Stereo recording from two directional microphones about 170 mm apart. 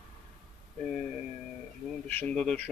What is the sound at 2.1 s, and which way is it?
Speech, 5° left (ahead or behind).